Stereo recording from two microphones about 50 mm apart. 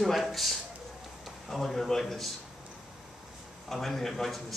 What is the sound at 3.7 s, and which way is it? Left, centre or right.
Speech, centre.